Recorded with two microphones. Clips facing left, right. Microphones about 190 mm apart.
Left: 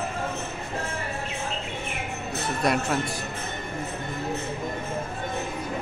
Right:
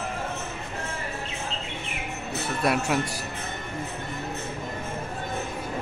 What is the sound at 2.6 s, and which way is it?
Speech, 5° right (ahead or behind).